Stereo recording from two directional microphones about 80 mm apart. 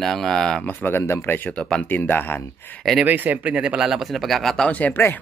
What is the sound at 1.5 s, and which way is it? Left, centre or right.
Speech, centre.